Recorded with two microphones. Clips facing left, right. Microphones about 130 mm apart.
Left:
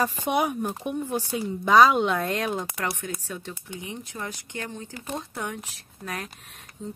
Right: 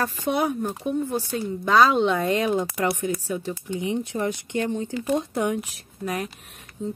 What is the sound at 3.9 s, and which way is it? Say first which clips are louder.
Speech: right 11 dB; 25° right (ahead or behind).